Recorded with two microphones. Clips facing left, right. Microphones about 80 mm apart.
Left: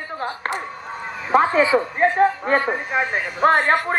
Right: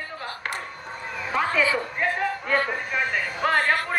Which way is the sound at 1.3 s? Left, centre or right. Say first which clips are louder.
Left 8 dB; left.